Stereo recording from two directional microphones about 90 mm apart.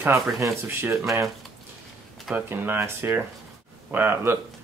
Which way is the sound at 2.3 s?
20° right (ahead or behind).